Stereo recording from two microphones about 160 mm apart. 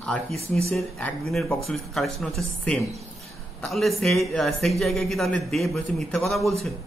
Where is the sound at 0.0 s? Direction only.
Centre (ahead or behind).